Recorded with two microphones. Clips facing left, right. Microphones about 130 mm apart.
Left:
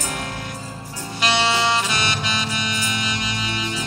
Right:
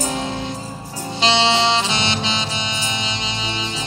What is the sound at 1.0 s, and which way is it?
Music, 25° right (ahead or behind).